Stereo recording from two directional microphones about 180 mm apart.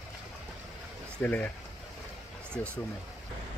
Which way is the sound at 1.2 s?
10° left (ahead or behind).